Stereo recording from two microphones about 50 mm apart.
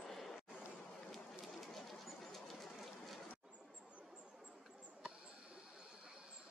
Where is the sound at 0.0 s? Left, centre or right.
Centre.